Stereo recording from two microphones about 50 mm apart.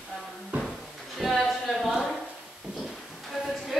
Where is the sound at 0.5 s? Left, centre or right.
Right.